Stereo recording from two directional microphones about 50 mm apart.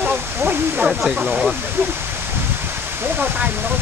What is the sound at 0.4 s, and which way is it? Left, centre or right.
Speech, right.